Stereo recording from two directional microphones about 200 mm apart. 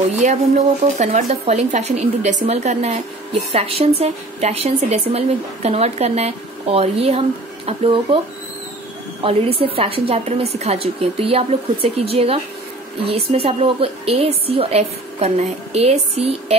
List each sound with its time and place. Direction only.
0.2 s a woman's voice: 35° right (ahead or behind)
9.2 s a woman's voice: 30° right (ahead or behind)